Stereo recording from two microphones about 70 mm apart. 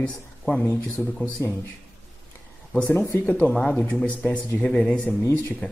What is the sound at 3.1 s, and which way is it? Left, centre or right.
Speech, left.